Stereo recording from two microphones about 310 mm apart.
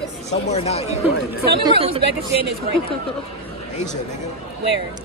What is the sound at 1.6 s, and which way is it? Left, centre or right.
Speech, centre.